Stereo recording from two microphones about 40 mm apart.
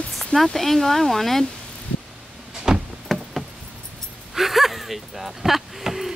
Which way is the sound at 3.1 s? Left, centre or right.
Centre.